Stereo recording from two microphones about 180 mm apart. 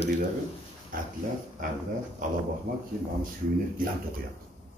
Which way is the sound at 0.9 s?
50° right (ahead or behind).